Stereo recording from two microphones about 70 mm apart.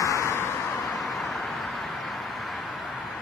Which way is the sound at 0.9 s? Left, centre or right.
Centre.